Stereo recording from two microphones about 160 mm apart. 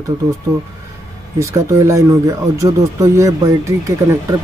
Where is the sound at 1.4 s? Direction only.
20° right (ahead or behind).